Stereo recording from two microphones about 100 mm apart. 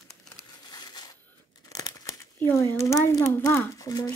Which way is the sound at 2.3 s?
20° left (ahead or behind).